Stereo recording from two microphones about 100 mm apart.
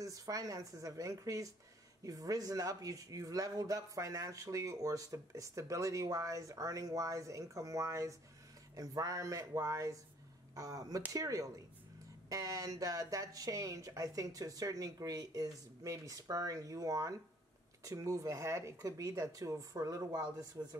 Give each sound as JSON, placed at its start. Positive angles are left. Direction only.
{"t": 0.0, "sound": "speech", "side_deg": -35}